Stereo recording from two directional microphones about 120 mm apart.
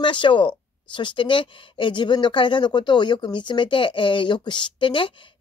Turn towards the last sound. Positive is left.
turn(degrees=45)  # may be behind; listen again after turning